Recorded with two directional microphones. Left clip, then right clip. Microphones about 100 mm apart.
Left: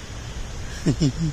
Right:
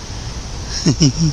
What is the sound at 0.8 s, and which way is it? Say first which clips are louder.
Speech: right 8 dB; 40° right (ahead or behind).